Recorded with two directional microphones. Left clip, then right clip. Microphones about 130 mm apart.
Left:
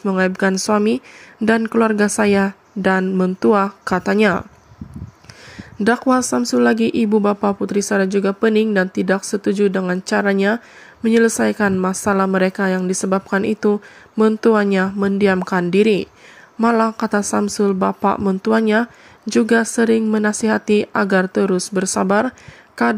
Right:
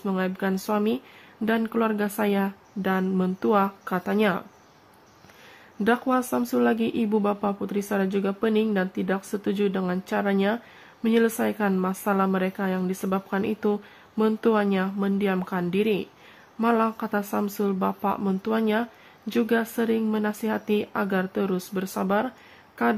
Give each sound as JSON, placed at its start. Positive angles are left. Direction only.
{"t": 0.2, "sound": "a woman's voice", "side_deg": 45}
{"t": 5.9, "sound": "a woman's voice", "side_deg": 40}